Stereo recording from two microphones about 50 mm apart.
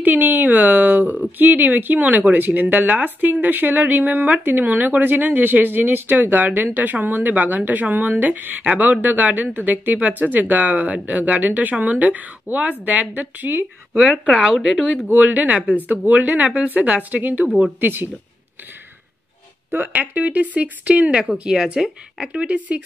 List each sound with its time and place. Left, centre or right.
0.0 s speech: right
14.3 s speech: centre
15.4 s a woman's voice: right
19.9 s speech: right
21.2 s speech: centre
22.3 s a woman's voice: right